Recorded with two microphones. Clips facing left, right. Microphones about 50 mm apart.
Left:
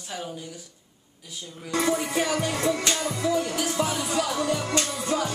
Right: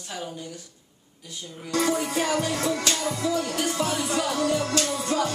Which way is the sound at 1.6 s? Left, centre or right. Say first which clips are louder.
Even; centre.